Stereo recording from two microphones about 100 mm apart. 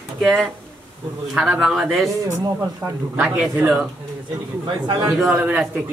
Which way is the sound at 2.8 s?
20° right (ahead or behind).